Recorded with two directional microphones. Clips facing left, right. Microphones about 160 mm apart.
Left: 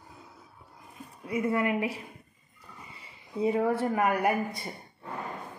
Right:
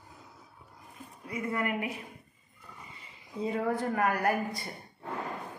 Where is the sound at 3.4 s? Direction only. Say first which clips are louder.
Left 4 dB; 10° left (ahead or behind).